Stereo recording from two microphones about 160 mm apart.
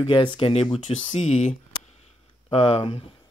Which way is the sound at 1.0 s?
45° left (ahead or behind).